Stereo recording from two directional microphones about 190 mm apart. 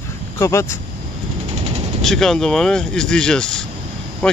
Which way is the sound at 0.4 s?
15° left (ahead or behind).